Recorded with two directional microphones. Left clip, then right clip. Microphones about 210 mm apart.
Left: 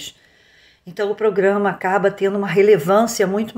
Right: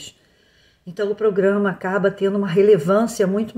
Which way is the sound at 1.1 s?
10° right (ahead or behind).